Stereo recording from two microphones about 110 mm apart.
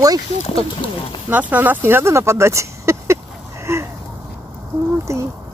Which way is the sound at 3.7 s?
25° right (ahead or behind).